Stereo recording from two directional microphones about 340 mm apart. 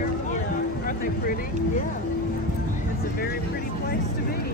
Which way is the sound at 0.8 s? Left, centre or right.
Left.